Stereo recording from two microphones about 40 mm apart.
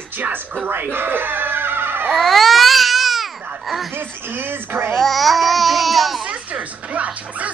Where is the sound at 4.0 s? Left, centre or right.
Right.